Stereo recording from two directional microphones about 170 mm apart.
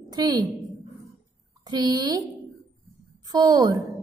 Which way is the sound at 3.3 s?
20° right (ahead or behind).